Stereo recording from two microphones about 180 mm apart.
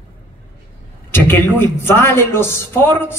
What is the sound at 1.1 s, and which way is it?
A man's voice, 10° left (ahead or behind).